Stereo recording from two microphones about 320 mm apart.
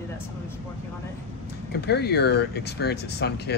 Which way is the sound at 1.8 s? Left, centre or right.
Left.